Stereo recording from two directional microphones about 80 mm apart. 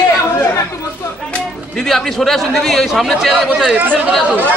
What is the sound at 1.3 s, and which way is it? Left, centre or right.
Speech, centre.